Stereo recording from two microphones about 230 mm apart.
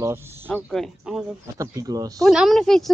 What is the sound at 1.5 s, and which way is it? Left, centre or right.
Speech, centre.